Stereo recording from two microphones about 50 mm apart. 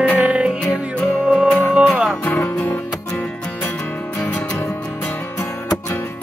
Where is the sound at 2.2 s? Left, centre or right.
Left.